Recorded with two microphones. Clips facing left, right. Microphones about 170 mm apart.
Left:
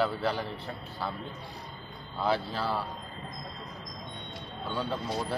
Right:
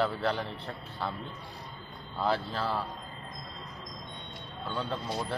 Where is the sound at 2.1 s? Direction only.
Centre (ahead or behind).